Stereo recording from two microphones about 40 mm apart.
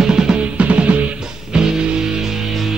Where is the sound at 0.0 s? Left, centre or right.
Centre.